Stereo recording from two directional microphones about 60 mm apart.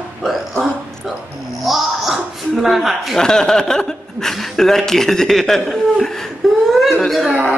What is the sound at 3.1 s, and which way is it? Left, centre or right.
Speech, centre.